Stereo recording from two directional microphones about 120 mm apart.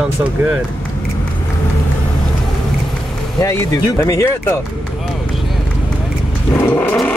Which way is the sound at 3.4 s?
25° left (ahead or behind).